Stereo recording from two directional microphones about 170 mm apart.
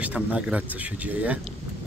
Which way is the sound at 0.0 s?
10° right (ahead or behind).